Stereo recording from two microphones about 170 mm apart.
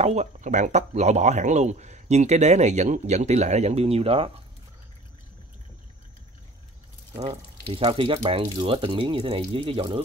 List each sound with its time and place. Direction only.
0.0 s speech: 40° right (ahead or behind)
7.2 s speech: 35° right (ahead or behind)